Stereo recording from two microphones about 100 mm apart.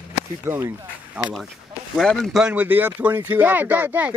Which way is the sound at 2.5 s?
15° right (ahead or behind).